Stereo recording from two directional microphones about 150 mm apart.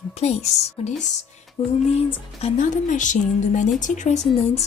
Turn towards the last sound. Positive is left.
turn(degrees=50)  # may be behind; listen again after turning